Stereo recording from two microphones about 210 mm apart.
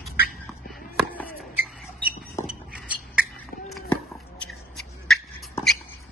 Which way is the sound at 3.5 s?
45° left (ahead or behind).